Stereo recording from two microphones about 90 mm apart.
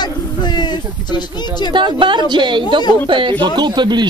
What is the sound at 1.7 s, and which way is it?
Speech, 60° right (ahead or behind).